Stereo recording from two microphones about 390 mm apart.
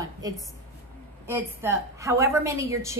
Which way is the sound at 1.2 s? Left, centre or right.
Centre.